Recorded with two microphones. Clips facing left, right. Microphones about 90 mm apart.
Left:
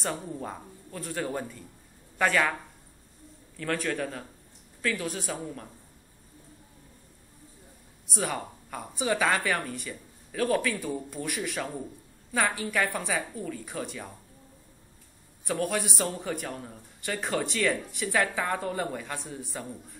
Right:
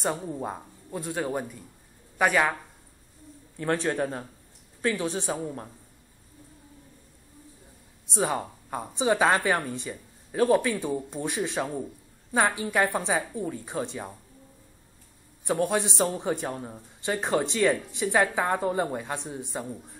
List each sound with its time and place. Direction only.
0.0 s speech: 20° right (ahead or behind)
3.5 s a man's voice: 25° right (ahead or behind)
8.1 s a man's voice: 25° right (ahead or behind)
15.4 s a man's voice: 25° right (ahead or behind)